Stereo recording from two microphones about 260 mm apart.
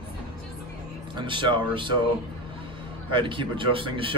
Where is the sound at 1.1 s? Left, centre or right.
Centre.